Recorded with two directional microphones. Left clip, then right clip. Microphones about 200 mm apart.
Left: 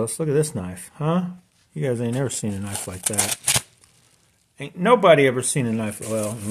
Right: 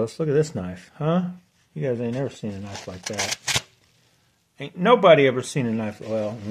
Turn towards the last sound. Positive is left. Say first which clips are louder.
# even
turn(degrees=10)  # may be behind; listen again after turning